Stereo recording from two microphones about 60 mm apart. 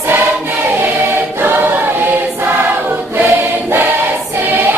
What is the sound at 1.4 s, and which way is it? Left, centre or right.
Choir, right.